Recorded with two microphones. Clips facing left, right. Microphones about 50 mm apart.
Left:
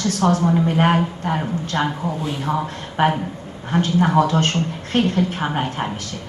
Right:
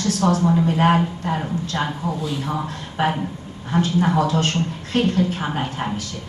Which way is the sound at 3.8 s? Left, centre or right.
Left.